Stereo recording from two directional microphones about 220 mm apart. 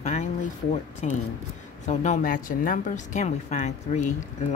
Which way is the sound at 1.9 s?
30° left (ahead or behind).